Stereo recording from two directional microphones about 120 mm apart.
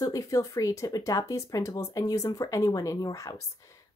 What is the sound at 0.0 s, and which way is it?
Speech, 30° left (ahead or behind).